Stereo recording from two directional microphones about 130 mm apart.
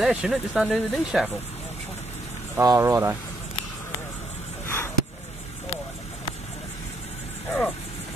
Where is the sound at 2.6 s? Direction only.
25° right (ahead or behind).